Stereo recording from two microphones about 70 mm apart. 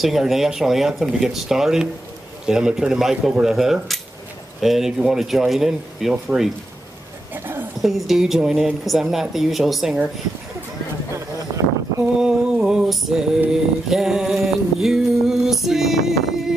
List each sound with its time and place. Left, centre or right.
0.0 s speech: centre
7.3 s a sound: right
7.8 s speech: centre
12.2 s music: centre